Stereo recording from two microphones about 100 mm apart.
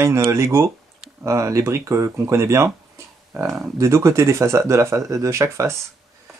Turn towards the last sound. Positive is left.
turn(degrees=-30)  # may be behind; listen again after turning